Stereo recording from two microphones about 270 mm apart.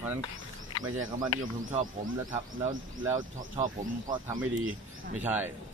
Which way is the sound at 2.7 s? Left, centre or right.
Centre.